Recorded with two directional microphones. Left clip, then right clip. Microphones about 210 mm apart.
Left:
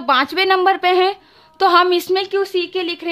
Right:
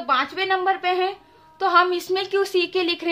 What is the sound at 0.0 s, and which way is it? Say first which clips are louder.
A woman's voice: left 6 dB; 45° left (ahead or behind).